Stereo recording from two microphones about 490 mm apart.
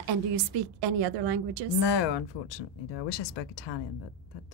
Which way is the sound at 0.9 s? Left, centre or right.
Right.